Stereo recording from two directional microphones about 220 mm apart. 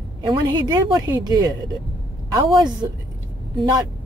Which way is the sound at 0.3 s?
20° right (ahead or behind).